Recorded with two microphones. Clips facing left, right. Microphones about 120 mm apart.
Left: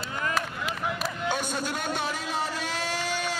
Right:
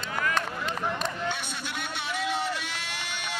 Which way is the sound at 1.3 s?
40° left (ahead or behind).